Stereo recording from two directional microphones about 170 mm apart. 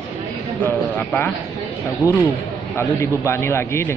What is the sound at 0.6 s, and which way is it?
Speech, 10° left (ahead or behind).